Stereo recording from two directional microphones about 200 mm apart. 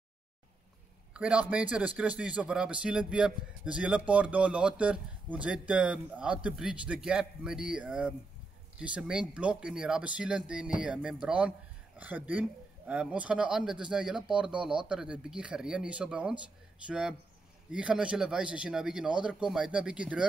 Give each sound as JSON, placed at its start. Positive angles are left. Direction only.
{"t": 1.1, "sound": "a man's voice", "side_deg": -5}